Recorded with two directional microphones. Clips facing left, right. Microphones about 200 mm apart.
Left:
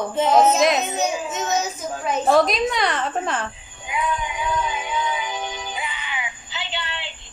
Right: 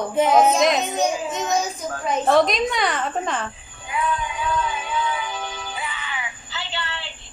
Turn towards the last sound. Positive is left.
turn(degrees=15)  # may be behind; listen again after turning